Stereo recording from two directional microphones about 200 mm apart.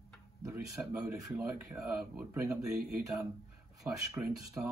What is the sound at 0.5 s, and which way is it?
Speech, 15° right (ahead or behind).